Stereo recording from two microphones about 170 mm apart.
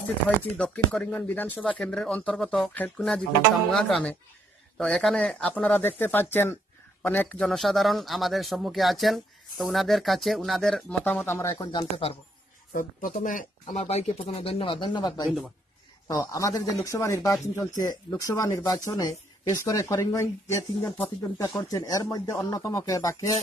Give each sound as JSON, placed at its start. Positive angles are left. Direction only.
{"t": 0.6, "sound": "speech", "side_deg": 5}
{"t": 12.7, "sound": "speech", "side_deg": 55}
{"t": 13.7, "sound": "speech", "side_deg": 40}
{"t": 15.2, "sound": "speech", "side_deg": 0}
{"t": 16.1, "sound": "speech", "side_deg": 20}